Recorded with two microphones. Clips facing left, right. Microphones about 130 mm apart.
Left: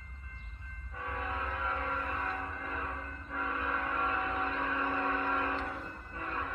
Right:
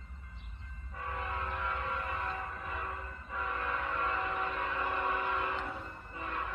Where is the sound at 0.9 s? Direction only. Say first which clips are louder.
Left 1 dB; 10° right (ahead or behind).